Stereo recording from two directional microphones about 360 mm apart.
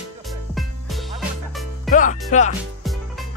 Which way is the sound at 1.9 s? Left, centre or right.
Left.